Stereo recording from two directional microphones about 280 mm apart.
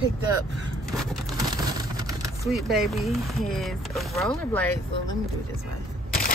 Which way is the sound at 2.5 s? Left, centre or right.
Centre.